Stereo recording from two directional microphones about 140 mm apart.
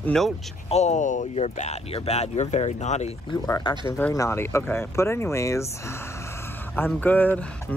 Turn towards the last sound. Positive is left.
turn(degrees=10)  # may be behind; listen again after turning